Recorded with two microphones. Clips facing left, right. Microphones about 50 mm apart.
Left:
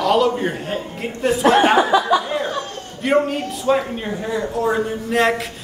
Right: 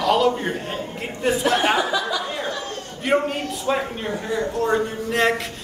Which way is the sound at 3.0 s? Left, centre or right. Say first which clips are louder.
Left 3 dB; centre.